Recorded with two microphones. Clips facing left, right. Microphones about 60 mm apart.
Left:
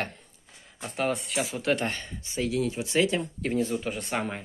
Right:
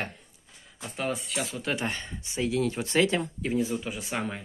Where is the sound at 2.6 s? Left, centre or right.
Right.